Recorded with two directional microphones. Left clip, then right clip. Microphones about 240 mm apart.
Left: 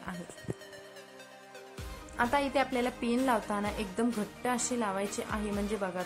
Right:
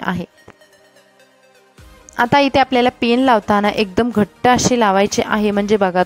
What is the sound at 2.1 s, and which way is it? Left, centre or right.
A woman's voice, right.